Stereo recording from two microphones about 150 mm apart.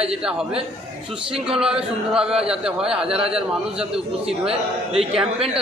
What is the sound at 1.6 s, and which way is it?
Speech, 5° right (ahead or behind).